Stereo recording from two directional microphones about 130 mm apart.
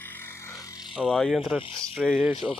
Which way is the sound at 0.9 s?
Centre (ahead or behind).